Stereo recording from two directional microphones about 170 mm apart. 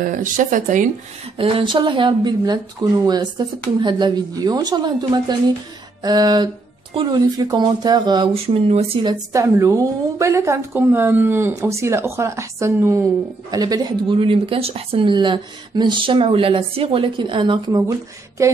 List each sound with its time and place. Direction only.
0.0 s speech: 50° right (ahead or behind)
1.4 s speech: 30° right (ahead or behind)
8.6 s speech: 35° right (ahead or behind)
9.3 s a woman's voice: 20° right (ahead or behind)